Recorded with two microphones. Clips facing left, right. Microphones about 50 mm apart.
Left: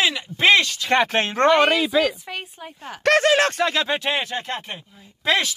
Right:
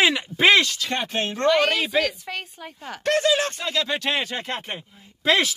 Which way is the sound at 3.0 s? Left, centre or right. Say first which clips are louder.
Left 4 dB; left.